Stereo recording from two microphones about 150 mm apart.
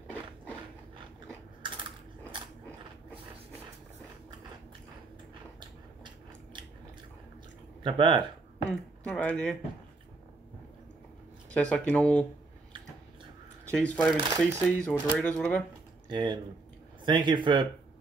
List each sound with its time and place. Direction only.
1.6 s typing: 35° right (ahead or behind)
7.8 s speech: 35° right (ahead or behind)
8.6 s speech: 5° left (ahead or behind)
11.5 s speech: 10° left (ahead or behind)
13.7 s speech: 10° left (ahead or behind)
16.1 s speech: 30° right (ahead or behind)